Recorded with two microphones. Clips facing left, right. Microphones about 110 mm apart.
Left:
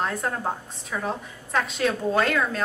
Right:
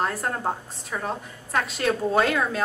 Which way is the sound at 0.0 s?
5° right (ahead or behind).